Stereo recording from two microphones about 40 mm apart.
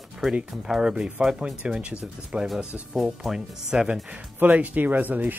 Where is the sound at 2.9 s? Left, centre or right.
Centre.